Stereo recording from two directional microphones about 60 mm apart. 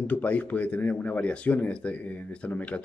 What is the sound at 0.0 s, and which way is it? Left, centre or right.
Speech, left.